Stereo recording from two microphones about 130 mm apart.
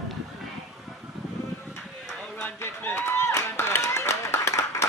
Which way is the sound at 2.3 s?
15° left (ahead or behind).